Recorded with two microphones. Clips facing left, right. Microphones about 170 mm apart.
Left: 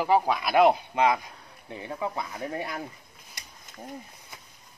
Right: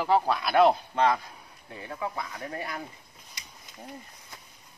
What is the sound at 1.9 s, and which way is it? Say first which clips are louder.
Speech: left 2 dB; 25° left (ahead or behind).